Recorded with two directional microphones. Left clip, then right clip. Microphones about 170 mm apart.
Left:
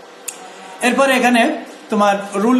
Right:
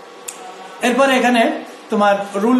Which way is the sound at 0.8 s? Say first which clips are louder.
Even; 30° left (ahead or behind).